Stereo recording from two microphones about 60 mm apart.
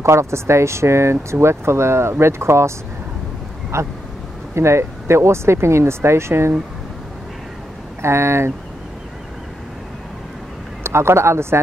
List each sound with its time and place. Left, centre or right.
0.0 s speech: right
3.7 s speech: right
8.0 s speech: right
10.8 s speech: right